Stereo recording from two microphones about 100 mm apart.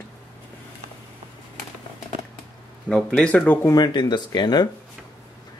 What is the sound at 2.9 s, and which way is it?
Speech, 5° left (ahead or behind).